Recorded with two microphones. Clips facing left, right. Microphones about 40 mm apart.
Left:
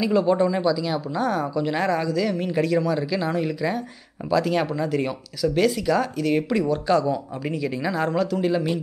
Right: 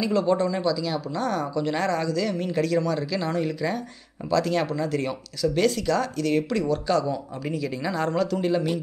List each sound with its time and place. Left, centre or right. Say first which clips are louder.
0.0 s speech: left 3 dB; centre